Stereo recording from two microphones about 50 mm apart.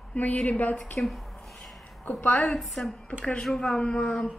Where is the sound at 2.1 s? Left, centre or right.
Left.